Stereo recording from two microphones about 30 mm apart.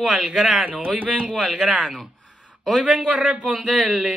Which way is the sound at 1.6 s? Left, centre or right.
Right.